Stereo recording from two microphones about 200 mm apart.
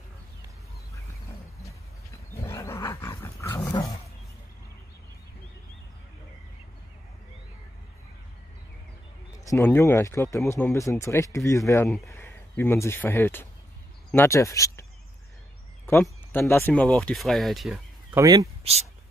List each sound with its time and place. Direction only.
2.4 s wild animals: 15° left (ahead or behind)
3.7 s roaring cats: 20° left (ahead or behind)
9.4 s speech: 15° left (ahead or behind)
16.0 s speech: 10° left (ahead or behind)
18.1 s speech: 15° right (ahead or behind)
18.6 s speech: 30° right (ahead or behind)